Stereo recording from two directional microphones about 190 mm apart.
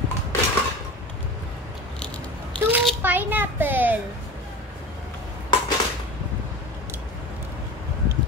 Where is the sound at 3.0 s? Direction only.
10° right (ahead or behind).